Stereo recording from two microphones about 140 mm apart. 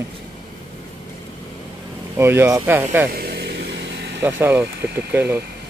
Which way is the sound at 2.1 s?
15° right (ahead or behind).